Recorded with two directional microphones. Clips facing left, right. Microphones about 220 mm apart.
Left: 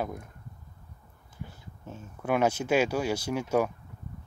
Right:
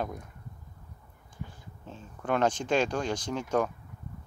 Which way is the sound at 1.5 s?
10° left (ahead or behind).